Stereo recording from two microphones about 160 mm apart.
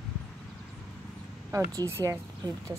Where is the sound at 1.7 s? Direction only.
20° right (ahead or behind).